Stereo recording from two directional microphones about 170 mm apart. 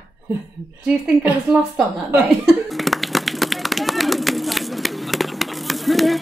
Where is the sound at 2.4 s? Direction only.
Centre (ahead or behind).